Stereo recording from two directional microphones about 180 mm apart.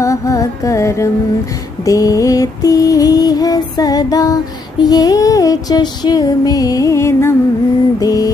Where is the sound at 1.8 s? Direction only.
20° left (ahead or behind).